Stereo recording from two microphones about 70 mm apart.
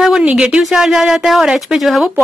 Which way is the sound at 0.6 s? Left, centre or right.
Centre.